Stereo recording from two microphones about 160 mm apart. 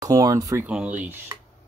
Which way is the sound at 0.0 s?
20° right (ahead or behind).